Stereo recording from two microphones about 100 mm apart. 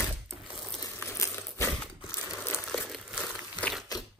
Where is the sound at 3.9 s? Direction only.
40° left (ahead or behind).